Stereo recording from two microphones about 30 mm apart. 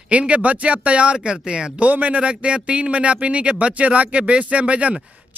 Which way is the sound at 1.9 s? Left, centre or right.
Right.